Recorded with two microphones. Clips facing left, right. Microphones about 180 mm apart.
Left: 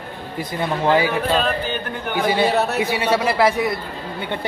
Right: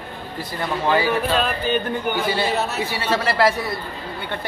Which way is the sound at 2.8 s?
15° left (ahead or behind).